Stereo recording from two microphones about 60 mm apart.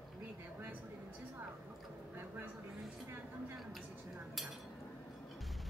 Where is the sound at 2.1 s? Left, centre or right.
Right.